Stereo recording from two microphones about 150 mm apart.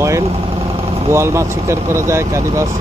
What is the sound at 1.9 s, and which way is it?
Speech, 20° right (ahead or behind).